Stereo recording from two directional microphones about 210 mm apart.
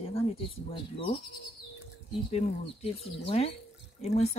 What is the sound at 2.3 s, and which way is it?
Speech, 30° left (ahead or behind).